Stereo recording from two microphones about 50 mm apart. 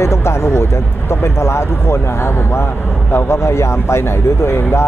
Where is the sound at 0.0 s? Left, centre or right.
Left.